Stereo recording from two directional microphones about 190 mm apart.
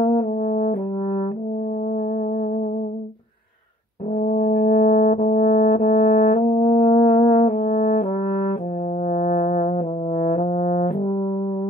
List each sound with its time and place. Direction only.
0.0 s brass instrument: 40° left (ahead or behind)
4.1 s brass instrument: 45° left (ahead or behind)